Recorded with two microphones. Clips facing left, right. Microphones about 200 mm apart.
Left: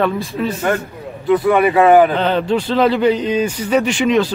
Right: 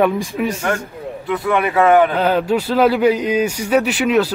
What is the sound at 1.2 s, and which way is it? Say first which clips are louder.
A man's voice: left 6 dB; centre (ahead or behind).